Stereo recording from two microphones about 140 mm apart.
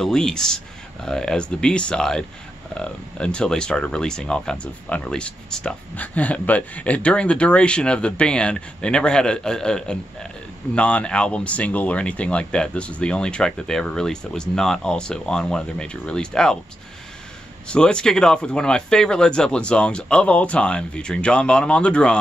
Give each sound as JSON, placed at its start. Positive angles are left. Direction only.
{"t": 0.0, "sound": "speech", "side_deg": 5}
{"t": 17.6, "sound": "speech", "side_deg": 5}